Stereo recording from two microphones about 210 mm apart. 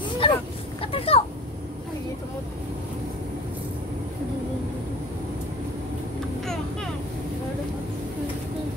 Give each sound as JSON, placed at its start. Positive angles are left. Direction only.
{"t": 0.2, "sound": "vehicle", "side_deg": 25}
{"t": 6.4, "sound": "vehicle", "side_deg": 0}